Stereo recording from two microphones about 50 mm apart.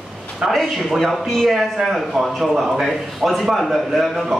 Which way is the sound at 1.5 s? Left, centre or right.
Centre.